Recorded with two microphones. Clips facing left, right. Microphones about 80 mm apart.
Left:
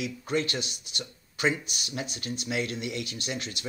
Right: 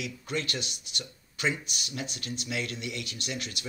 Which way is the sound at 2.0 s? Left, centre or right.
Left.